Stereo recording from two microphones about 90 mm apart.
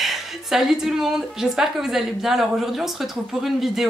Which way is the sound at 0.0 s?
5° right (ahead or behind).